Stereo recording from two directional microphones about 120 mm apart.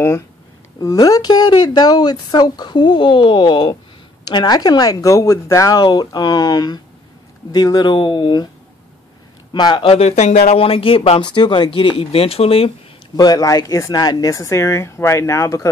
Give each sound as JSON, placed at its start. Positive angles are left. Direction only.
{"t": 0.7, "sound": "a woman's voice", "side_deg": 30}
{"t": 9.5, "sound": "speech", "side_deg": 40}
{"t": 13.1, "sound": "speech", "side_deg": 30}